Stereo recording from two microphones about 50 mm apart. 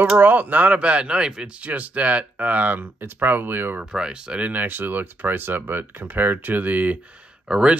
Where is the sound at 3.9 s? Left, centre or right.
Centre.